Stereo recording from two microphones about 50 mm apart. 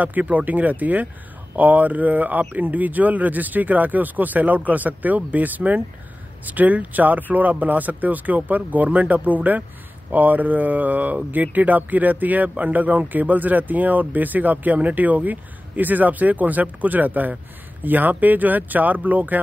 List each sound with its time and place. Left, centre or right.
0.0 s speech: right